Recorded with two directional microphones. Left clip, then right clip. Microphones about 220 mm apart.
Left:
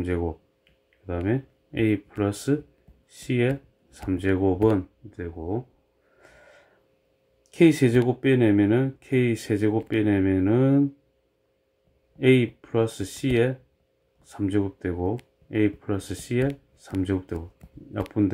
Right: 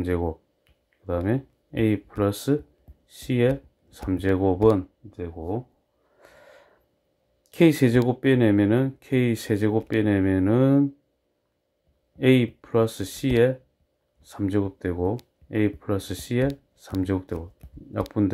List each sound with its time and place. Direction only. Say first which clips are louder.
1.0 s speech: right 1 dB; 15° right (ahead or behind)
6.2 s wheeze: right 2 dB; 15° right (ahead or behind)
7.5 s speech: even; 20° right (ahead or behind)
12.2 s speech: even; 15° right (ahead or behind)